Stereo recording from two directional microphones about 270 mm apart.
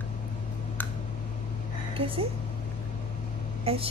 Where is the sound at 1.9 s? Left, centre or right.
Centre.